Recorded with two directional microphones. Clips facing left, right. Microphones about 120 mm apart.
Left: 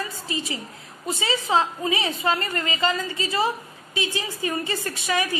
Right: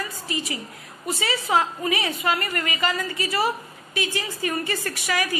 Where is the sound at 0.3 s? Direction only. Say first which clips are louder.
Even; 20° left (ahead or behind).